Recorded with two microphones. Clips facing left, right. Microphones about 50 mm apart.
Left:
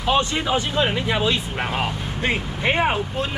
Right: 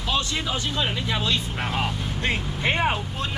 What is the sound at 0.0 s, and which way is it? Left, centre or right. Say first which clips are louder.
Speech: left 6 dB; left.